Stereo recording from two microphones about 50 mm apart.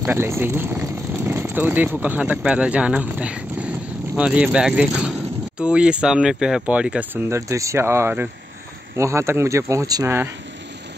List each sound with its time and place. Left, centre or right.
0.0 s speech: right
3.0 s a sound: right
4.2 s speech: right
6.6 s speech: right
7.2 s speech: right
7.8 s speech: right
8.9 s speech: right